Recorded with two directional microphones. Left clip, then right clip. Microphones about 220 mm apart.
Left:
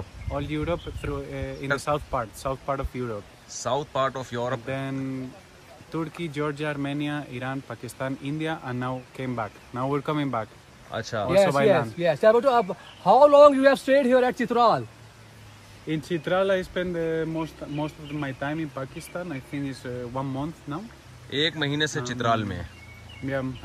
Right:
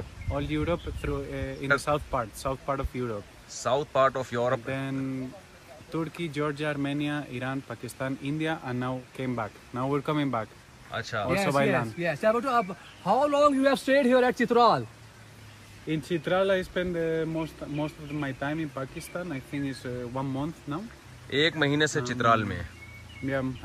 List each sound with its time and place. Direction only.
0.3 s speech: centre (ahead or behind)
10.9 s speech: 15° left (ahead or behind)
11.4 s speech: centre (ahead or behind)
12.0 s speech: 40° left (ahead or behind)
13.6 s speech: centre (ahead or behind)
15.9 s speech: 5° left (ahead or behind)